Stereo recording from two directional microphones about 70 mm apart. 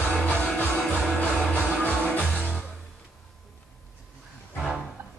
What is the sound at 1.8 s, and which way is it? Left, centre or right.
Music, centre.